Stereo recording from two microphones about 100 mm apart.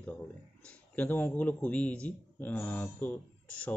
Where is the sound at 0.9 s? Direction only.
20° left (ahead or behind).